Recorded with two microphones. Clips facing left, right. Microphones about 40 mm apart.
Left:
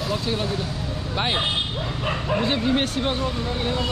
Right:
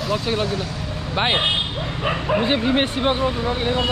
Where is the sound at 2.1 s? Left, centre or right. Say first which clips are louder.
Right 4 dB; centre.